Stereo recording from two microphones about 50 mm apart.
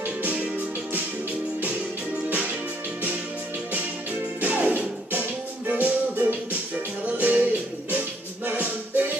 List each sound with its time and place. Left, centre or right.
0.0 s music: right
4.4 s music: right
8.5 s music: right